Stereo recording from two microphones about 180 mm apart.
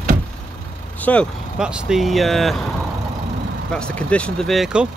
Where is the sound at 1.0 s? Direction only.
10° left (ahead or behind).